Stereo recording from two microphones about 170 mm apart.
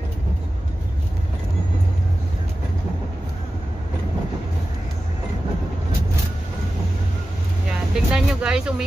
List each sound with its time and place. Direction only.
7.9 s vehicle: 5° right (ahead or behind)